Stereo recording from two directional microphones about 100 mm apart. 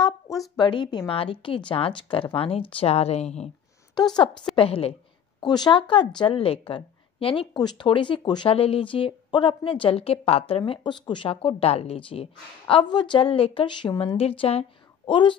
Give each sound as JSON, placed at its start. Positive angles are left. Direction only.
{"t": 0.6, "sound": "speech", "side_deg": 50}
{"t": 1.1, "sound": "a woman's voice", "side_deg": 65}
{"t": 4.6, "sound": "a woman's voice", "side_deg": 70}
{"t": 5.4, "sound": "speech", "side_deg": 45}
{"t": 5.8, "sound": "a woman's voice", "side_deg": 55}
{"t": 7.5, "sound": "speech", "side_deg": 50}
{"t": 8.5, "sound": "a woman's voice", "side_deg": 70}
{"t": 12.8, "sound": "a woman's voice", "side_deg": 50}
{"t": 15.0, "sound": "a woman's voice", "side_deg": 55}